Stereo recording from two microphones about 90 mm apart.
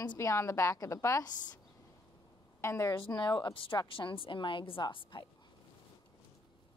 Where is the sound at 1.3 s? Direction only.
50° left (ahead or behind).